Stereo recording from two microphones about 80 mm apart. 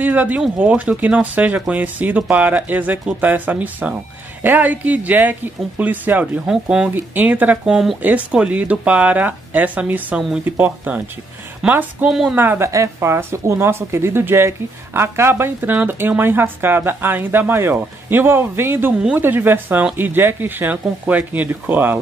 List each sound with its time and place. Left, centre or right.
0.0 s speech: right
7.7 s speech: centre
8.0 s speech: centre
12.1 s speech: centre
12.4 s speech: right
12.6 s speech: right